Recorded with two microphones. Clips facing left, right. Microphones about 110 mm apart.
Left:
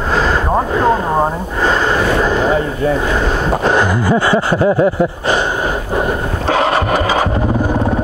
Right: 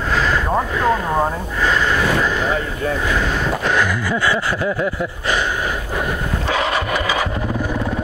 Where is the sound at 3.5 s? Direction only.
30° left (ahead or behind).